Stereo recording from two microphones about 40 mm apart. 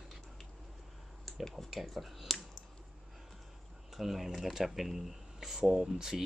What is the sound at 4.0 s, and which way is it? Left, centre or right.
Speech, centre.